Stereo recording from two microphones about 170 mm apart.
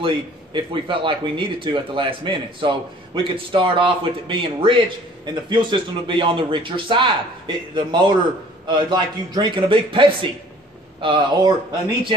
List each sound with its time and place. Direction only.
0.0 s a man's voice: 30° right (ahead or behind)